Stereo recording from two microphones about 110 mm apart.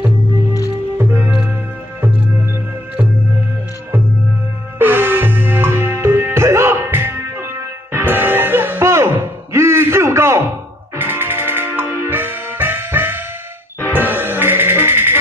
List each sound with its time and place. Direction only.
0.9 s music: 15° right (ahead or behind)
4.7 s music: 20° right (ahead or behind)